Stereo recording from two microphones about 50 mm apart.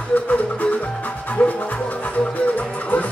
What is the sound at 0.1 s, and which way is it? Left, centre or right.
Music, left.